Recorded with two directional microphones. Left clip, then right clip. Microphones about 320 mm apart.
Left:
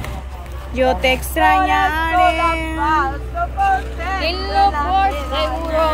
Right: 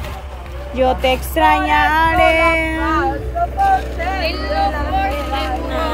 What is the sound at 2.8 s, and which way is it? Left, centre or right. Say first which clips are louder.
Speech: left 6 dB; centre.